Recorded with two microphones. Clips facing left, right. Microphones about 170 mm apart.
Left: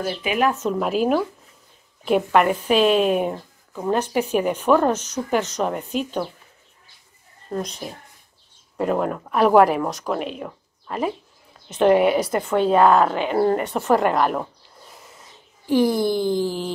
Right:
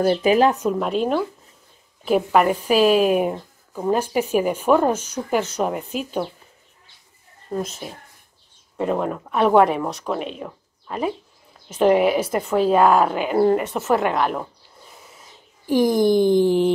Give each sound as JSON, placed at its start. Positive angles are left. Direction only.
{"t": 0.0, "sound": "speech", "side_deg": -40}
{"t": 0.7, "sound": "a woman's voice", "side_deg": 0}
{"t": 7.5, "sound": "a woman's voice", "side_deg": -5}
{"t": 15.7, "sound": "a woman's voice", "side_deg": -15}